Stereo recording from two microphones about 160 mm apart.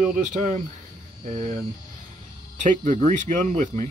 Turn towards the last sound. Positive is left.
turn(degrees=-50)  # may be behind; listen again after turning